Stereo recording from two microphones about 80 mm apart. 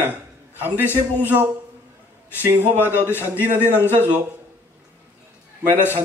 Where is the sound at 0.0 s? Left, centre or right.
Right.